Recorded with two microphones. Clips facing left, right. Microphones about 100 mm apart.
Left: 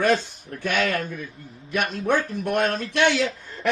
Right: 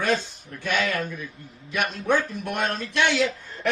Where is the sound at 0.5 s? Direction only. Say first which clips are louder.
Left 2 dB; 50° left (ahead or behind).